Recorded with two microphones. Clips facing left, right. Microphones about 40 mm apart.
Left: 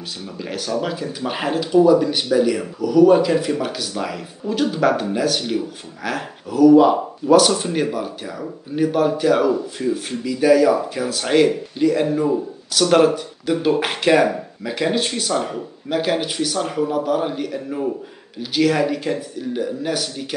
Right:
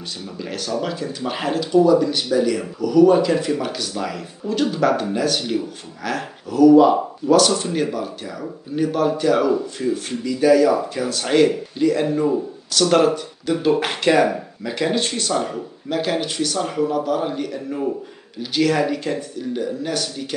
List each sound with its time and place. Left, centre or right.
0.4 s speech: centre